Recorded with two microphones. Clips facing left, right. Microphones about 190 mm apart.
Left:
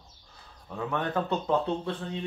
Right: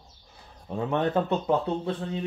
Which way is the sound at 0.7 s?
25° right (ahead or behind).